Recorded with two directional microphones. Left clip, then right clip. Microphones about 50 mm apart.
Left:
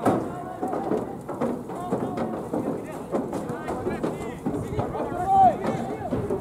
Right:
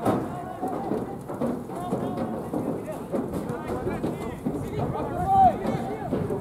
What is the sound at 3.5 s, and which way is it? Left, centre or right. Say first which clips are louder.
Run: left 1 dB; centre.